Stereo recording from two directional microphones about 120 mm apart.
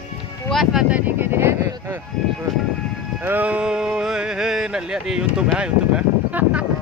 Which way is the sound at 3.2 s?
15° right (ahead or behind).